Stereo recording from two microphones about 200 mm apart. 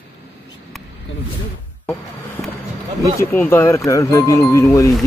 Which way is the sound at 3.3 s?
10° left (ahead or behind).